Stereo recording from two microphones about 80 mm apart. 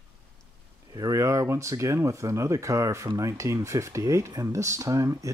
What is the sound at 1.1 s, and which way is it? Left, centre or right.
Speech, right.